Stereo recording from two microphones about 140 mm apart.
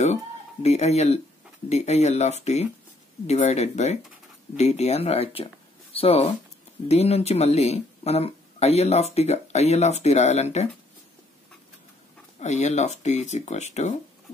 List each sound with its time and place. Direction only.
0.0 s speech: 50° left (ahead or behind)
12.4 s speech: 55° left (ahead or behind)